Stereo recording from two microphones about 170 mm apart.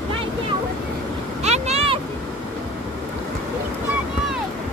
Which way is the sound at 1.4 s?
40° right (ahead or behind).